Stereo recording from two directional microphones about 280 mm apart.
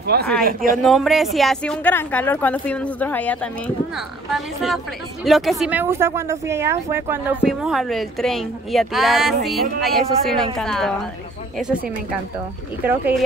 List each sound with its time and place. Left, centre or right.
0.0 s speech: right
0.8 s speech: centre
12.8 s speech: centre